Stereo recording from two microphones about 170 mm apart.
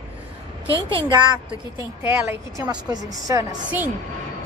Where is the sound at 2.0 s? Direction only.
10° right (ahead or behind).